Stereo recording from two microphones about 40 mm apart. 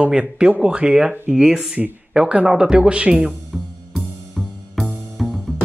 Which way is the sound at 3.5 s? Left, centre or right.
Centre.